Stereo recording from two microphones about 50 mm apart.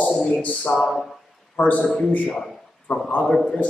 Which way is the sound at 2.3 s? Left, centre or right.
Centre.